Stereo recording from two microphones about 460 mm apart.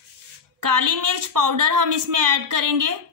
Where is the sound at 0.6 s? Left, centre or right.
Right.